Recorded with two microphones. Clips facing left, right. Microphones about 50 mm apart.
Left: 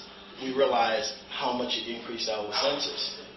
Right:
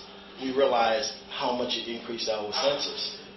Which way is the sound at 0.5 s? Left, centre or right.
Centre.